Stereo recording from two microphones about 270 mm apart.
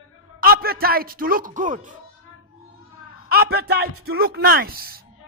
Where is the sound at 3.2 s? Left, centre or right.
Right.